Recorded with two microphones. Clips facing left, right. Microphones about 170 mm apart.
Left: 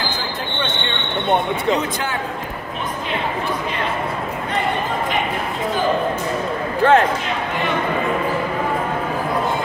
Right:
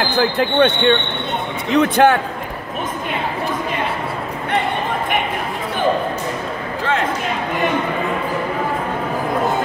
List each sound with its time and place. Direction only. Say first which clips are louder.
0.1 s speech: right 10 dB; 65° right (ahead or behind)
6.8 s speech: left 8 dB; 55° left (ahead or behind)